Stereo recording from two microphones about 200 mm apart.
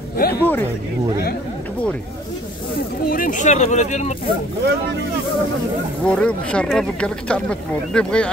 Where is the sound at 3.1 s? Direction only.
45° left (ahead or behind).